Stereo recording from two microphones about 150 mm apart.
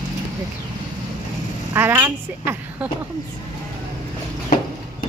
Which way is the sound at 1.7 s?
15° right (ahead or behind).